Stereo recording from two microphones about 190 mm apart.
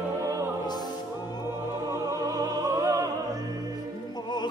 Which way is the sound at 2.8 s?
20° right (ahead or behind).